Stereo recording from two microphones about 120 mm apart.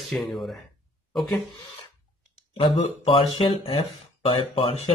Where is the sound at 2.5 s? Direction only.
50° left (ahead or behind).